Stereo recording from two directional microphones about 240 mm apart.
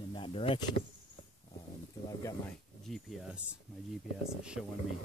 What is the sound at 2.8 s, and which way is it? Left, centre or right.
Speech, centre.